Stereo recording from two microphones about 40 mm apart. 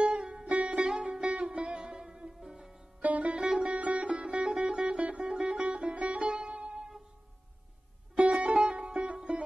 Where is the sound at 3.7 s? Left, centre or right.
Right.